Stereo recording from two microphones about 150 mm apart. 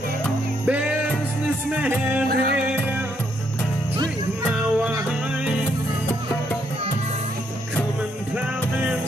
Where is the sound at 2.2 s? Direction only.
90° right.